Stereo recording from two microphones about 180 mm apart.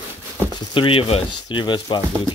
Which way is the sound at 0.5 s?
30° left (ahead or behind).